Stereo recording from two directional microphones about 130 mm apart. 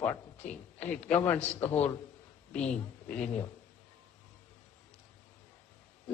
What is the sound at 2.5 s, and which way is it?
Speech, 10° left (ahead or behind).